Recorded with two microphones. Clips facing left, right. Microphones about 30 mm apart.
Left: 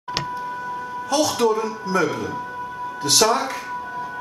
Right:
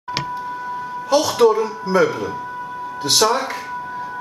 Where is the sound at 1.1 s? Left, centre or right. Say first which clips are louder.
Right 5 dB; centre.